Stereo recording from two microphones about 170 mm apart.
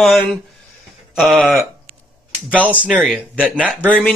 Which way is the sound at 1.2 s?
Centre (ahead or behind).